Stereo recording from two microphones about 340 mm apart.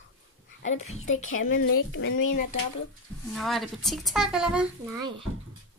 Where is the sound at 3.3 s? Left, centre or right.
Centre.